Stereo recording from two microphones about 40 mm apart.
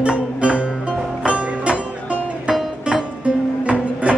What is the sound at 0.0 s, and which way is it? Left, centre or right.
Music, right.